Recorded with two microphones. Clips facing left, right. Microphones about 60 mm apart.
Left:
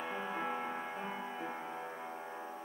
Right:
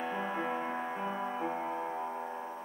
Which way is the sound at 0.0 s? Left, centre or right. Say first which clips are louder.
Right 4 dB; centre.